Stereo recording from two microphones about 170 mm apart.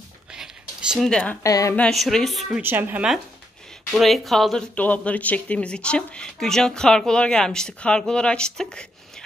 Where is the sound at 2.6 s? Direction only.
10° right (ahead or behind).